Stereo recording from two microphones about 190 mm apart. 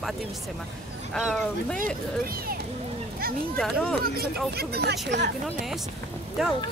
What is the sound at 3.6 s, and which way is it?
Speech, centre (ahead or behind).